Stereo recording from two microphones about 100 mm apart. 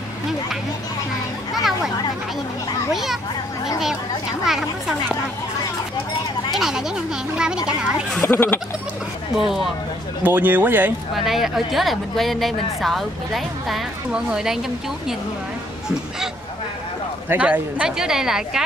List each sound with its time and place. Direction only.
1.5 s children playing: centre (ahead or behind)
2.9 s speech: centre (ahead or behind)
4.5 s speech: 5° right (ahead or behind)
6.5 s speech: 5° right (ahead or behind)
8.2 s speech: 20° left (ahead or behind)
9.3 s speech: 5° right (ahead or behind)
10.2 s speech: 20° right (ahead or behind)
11.1 s speech: centre (ahead or behind)
17.3 s speech: 15° right (ahead or behind)